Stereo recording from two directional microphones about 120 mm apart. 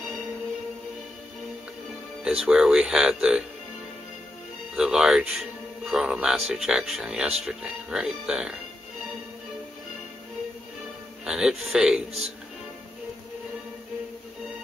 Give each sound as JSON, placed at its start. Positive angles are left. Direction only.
{"t": 2.2, "sound": "speech", "side_deg": -5}
{"t": 4.7, "sound": "speech", "side_deg": -5}
{"t": 11.2, "sound": "speech", "side_deg": -5}